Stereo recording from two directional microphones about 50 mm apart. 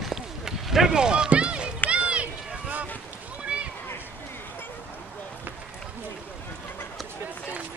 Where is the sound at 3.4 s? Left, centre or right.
Right.